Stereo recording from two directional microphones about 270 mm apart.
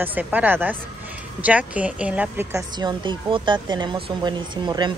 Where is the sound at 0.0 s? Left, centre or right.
Centre.